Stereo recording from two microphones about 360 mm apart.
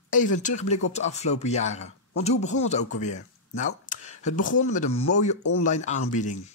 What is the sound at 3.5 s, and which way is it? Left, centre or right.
Speech, left.